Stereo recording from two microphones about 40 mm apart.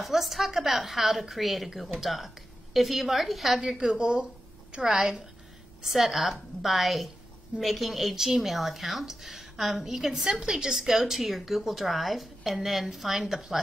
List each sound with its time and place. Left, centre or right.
0.0 s a woman's voice: centre
4.0 s speech: right
4.8 s a woman's voice: centre